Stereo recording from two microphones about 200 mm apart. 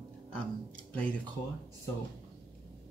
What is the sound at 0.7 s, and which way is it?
Speech, 5° left (ahead or behind).